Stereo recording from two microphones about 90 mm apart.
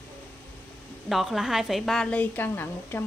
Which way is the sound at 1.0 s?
Centre (ahead or behind).